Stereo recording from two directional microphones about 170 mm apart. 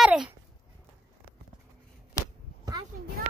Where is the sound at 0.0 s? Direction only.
5° right (ahead or behind).